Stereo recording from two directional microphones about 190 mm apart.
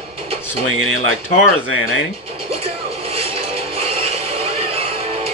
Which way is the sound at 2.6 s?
30° right (ahead or behind).